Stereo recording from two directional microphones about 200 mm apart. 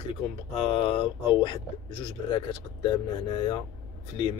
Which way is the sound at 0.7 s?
25° left (ahead or behind).